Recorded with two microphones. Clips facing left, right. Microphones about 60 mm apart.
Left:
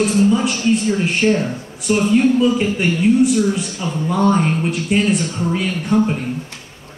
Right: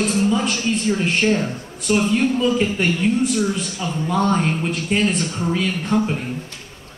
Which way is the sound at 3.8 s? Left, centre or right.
Centre.